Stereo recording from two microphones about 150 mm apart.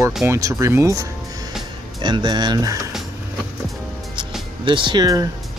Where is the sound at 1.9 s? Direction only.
30° right (ahead or behind).